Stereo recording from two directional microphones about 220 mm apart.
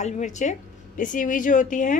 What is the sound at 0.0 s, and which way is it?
A woman's voice, 35° left (ahead or behind).